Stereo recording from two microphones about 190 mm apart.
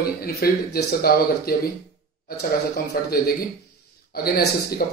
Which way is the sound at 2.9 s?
50° left (ahead or behind).